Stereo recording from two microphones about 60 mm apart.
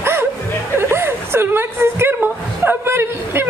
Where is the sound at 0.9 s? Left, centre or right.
Right.